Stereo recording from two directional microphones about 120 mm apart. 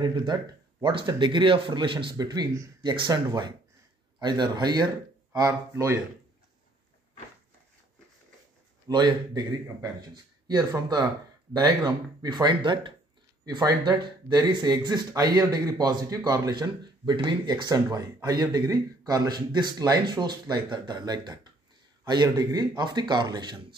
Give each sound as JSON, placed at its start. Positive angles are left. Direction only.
{"t": 0.0, "sound": "speech", "side_deg": -40}
{"t": 4.2, "sound": "speech", "side_deg": -40}
{"t": 5.3, "sound": "speech", "side_deg": -25}
{"t": 8.8, "sound": "speech", "side_deg": -35}
{"t": 12.2, "sound": "speech", "side_deg": -35}